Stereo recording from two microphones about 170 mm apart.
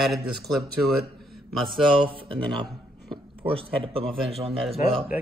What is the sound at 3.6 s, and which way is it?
Speech, 35° right (ahead or behind).